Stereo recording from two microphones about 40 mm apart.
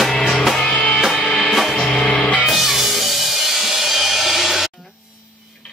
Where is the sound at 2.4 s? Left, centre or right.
Centre.